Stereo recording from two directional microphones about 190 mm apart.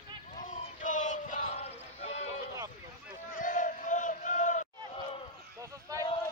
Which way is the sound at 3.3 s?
45° left (ahead or behind).